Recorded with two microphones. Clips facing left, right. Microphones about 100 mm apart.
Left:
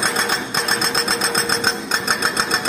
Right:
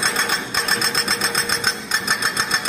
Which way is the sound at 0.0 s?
20° left (ahead or behind).